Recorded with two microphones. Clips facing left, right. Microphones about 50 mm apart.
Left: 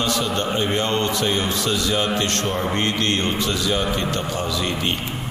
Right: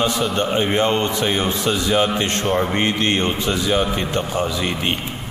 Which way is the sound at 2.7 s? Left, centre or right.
Centre.